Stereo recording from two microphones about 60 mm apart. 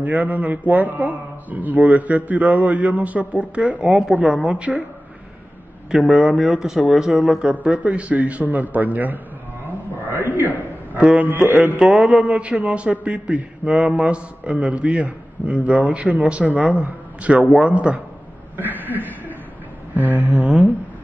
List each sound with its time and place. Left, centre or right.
0.0 s a man's voice: right
3.8 s speech: centre
5.9 s a man's voice: centre; by 9.2 s right
9.7 s a sound: right
11.0 s a man's voice: right
11.2 s music: right
11.8 s a man's voice: centre
18.6 s chuckle: right
19.9 s a sound: right
20.3 s a man's voice: right